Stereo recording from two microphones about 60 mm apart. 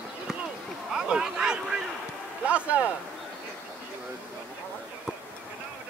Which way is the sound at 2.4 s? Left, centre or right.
Right.